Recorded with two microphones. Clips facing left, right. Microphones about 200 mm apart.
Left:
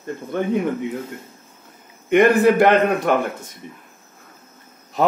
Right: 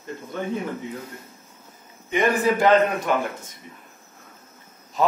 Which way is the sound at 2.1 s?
65° left (ahead or behind).